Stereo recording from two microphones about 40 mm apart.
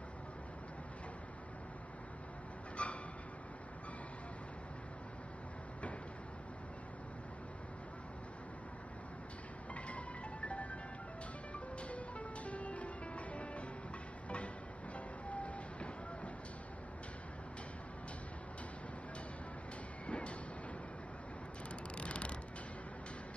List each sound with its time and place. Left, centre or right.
2.8 s a sound: left
9.8 s music: left
11.9 s music: left
15.2 s music: left
20.1 s music: left
21.9 s vehicle: left